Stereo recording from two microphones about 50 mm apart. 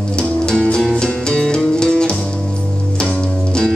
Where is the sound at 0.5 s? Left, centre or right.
Centre.